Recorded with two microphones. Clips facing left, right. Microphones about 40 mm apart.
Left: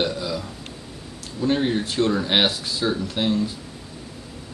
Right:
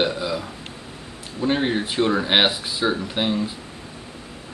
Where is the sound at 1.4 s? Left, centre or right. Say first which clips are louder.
Even; centre.